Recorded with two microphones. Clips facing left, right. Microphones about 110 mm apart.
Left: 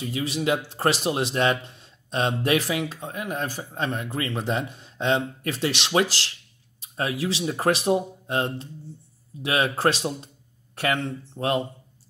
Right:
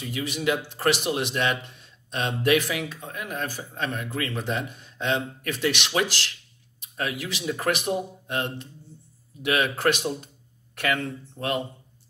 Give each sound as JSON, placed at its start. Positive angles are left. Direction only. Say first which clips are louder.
{"t": 0.0, "sound": "speech", "louder": "left 1 dB", "side_deg": 30}